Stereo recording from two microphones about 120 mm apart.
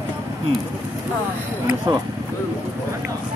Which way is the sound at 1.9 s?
35° right (ahead or behind).